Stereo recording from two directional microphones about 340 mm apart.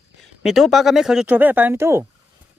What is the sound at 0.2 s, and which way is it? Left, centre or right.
Speech, centre.